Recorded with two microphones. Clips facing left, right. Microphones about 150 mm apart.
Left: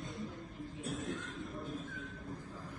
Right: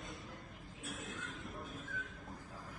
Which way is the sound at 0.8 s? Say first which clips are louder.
Left 6 dB; centre (ahead or behind).